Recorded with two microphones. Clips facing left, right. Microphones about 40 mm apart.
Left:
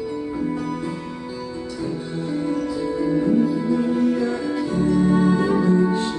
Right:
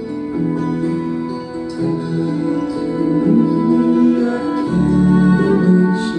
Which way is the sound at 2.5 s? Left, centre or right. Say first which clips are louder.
Right 5 dB; centre.